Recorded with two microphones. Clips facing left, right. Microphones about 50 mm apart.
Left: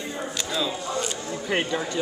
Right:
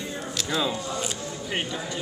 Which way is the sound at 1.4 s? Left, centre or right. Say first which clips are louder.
Left 5 dB; left.